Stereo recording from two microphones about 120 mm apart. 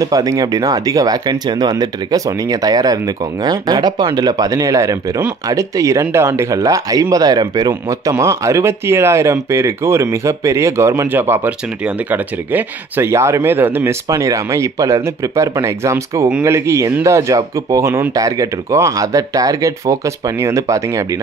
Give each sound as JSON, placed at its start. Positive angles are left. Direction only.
{"t": 0.0, "sound": "speech", "side_deg": -30}